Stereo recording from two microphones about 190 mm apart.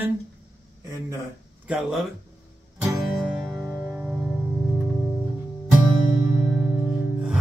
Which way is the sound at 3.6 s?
10° right (ahead or behind).